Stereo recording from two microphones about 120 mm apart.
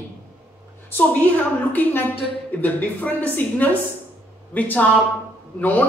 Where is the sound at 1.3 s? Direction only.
15° left (ahead or behind).